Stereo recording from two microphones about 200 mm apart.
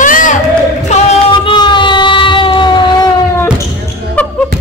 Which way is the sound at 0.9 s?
25° left (ahead or behind).